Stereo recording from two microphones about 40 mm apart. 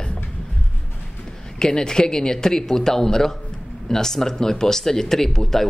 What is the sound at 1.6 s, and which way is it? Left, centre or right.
Speech, centre.